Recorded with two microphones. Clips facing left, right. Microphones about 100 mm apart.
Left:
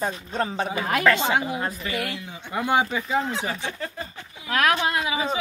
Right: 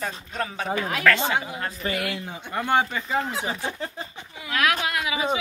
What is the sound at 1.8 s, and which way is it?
Speech, 45° right (ahead or behind).